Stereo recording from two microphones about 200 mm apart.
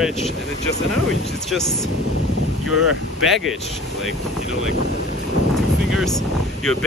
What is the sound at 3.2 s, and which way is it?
Speech, centre (ahead or behind).